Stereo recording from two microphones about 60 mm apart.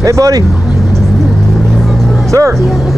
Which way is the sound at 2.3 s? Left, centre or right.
Right.